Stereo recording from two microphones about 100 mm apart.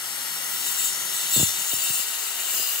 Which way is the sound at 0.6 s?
40° left (ahead or behind).